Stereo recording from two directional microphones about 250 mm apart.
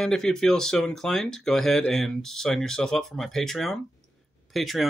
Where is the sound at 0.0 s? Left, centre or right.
Centre.